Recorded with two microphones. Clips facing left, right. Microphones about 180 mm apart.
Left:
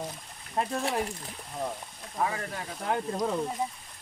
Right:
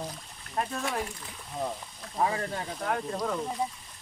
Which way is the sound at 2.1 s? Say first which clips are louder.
Right 2 dB; 30° right (ahead or behind).